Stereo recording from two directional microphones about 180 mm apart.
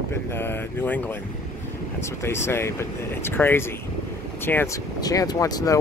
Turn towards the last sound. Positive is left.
turn(degrees=20)  # may be behind; listen again after turning